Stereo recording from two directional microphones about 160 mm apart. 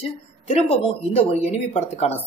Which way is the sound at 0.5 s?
40° left (ahead or behind).